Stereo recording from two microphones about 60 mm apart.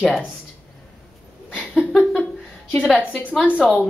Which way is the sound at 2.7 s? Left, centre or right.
Left.